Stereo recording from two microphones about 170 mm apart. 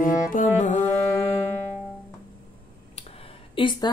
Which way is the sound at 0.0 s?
55° left (ahead or behind).